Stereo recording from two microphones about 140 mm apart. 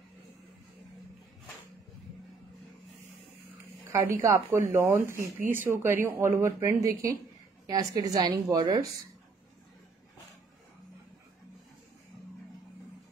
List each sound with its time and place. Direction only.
3.9 s speech: 20° right (ahead or behind)